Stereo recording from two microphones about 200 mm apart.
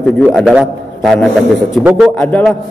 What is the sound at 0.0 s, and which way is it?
A man's voice, centre (ahead or behind).